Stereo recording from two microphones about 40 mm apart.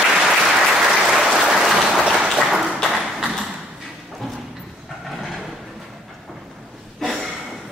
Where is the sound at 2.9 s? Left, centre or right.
Centre.